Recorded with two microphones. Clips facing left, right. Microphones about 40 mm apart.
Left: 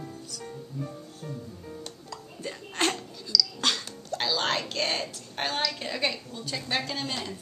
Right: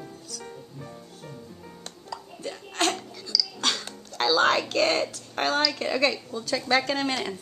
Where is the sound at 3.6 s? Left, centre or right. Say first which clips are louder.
Even; centre.